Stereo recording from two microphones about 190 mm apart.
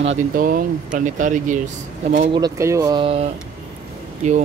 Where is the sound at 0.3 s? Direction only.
45° right (ahead or behind).